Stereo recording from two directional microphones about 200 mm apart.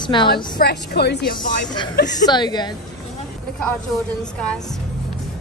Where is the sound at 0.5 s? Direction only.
55° left (ahead or behind).